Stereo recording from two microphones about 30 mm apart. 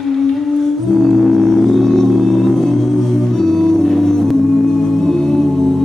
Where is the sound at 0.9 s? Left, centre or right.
Centre.